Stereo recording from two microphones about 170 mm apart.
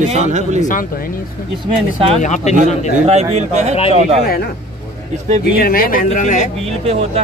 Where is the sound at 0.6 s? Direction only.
50° left (ahead or behind).